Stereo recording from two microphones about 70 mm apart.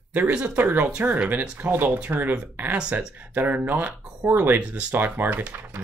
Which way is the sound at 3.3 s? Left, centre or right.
Right.